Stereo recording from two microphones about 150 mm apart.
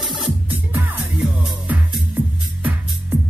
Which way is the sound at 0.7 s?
10° right (ahead or behind).